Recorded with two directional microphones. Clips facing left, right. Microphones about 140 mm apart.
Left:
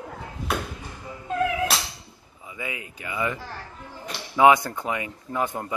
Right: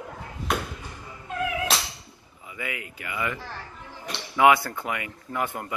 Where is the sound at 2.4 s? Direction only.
20° left (ahead or behind).